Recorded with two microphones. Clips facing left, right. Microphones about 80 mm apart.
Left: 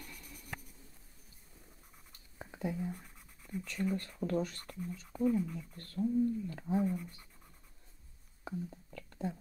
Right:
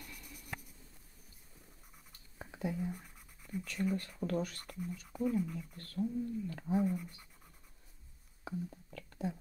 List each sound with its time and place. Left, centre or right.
0.0 s writing: centre
2.3 s whispering: centre
2.8 s a sound: centre
3.7 s speech: centre
5.9 s speech: centre
6.6 s speech: centre
8.6 s whispering: centre